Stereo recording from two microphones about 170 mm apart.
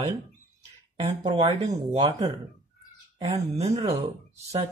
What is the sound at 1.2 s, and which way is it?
Speech, 35° right (ahead or behind).